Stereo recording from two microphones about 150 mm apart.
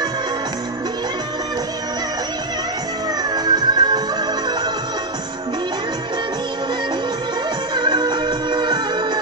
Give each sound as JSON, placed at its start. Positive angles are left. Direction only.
{"t": 3.3, "sound": "music", "side_deg": -30}
{"t": 7.7, "sound": "music", "side_deg": -30}